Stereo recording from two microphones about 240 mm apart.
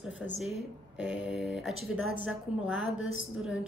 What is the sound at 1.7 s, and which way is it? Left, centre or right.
A woman's voice, left.